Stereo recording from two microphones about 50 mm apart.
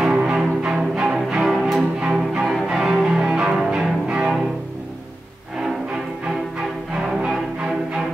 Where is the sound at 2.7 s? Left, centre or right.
Centre.